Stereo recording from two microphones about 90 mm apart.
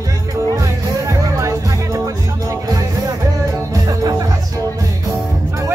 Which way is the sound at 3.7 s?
40° right (ahead or behind).